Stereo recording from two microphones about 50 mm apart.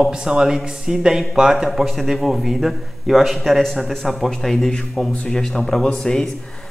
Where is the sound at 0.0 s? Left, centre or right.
Centre.